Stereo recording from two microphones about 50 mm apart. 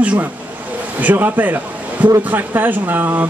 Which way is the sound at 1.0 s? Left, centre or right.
Right.